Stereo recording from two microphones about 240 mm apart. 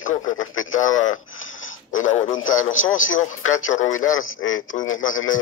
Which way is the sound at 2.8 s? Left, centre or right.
Left.